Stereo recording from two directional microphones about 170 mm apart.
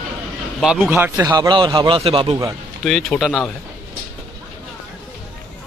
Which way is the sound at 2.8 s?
Centre (ahead or behind).